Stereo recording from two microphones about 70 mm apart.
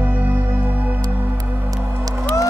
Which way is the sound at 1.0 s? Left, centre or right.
Right.